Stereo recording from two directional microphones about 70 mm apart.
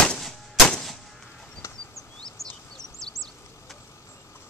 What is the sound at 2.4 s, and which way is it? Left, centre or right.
Bird, left.